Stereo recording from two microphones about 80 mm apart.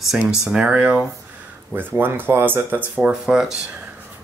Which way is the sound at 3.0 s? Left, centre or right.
Centre.